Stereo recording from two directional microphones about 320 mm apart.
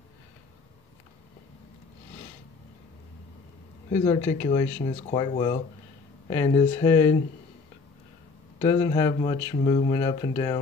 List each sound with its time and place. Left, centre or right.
4.4 s speech: centre
8.5 s speech: centre